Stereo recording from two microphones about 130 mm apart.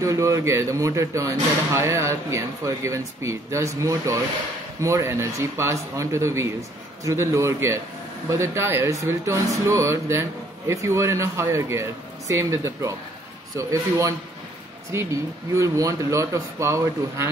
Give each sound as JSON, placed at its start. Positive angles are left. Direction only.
{"t": 0.0, "sound": "speech", "side_deg": -25}